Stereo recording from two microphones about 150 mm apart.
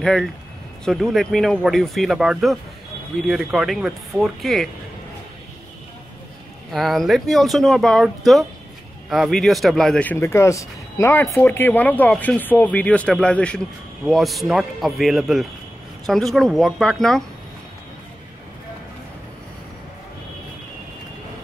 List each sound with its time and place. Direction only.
0.0 s speech: 5° left (ahead or behind)
6.7 s speech: centre (ahead or behind)
10.2 s speech: 20° left (ahead or behind); by 17.2 s centre (ahead or behind)